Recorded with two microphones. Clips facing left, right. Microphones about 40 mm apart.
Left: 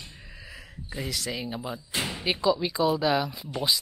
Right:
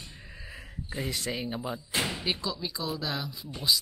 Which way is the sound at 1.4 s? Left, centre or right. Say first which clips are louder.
Even; centre.